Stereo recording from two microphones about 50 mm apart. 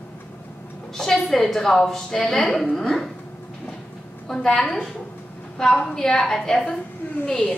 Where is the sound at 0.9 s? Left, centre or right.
Centre.